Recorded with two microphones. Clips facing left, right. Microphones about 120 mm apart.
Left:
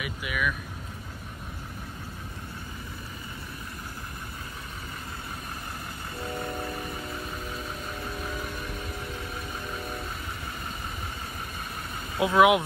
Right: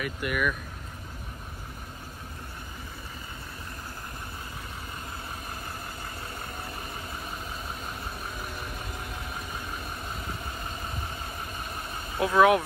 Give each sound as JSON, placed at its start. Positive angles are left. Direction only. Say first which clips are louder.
{"t": 0.0, "sound": "speech", "louder": "right 2 dB", "side_deg": 0}
{"t": 12.2, "sound": "speech", "louder": "left 1 dB", "side_deg": 15}